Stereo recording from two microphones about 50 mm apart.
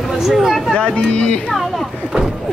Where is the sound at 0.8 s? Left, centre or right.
Left.